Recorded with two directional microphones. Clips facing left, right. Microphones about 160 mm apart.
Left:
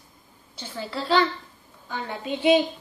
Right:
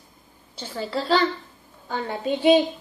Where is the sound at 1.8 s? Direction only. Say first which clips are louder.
Right 5 dB; 40° right (ahead or behind).